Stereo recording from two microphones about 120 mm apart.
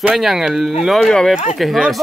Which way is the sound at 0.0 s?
5° right (ahead or behind).